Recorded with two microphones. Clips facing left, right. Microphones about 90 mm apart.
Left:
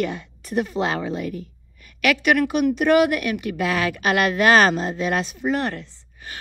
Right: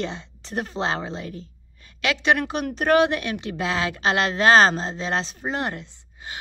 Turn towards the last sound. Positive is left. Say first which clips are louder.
# right 1 dB
turn(degrees=-20)  # may be behind; listen again after turning